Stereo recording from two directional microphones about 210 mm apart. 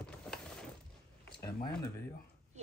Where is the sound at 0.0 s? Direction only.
5° left (ahead or behind).